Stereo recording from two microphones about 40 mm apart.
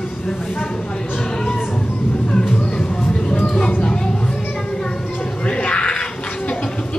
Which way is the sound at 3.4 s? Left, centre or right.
Centre.